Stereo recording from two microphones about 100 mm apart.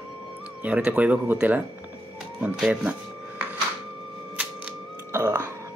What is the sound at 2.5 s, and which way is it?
Speech, 5° right (ahead or behind).